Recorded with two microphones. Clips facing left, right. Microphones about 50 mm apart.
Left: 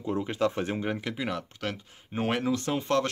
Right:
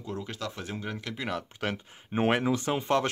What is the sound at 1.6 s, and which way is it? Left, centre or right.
Speech, centre.